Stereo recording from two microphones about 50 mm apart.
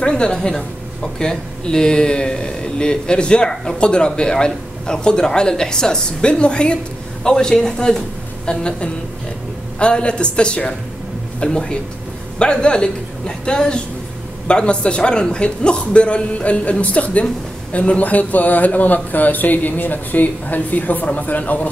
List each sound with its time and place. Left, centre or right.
0.0 s a woman's voice: centre